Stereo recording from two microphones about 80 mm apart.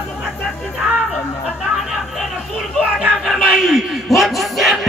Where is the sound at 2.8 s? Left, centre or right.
Centre.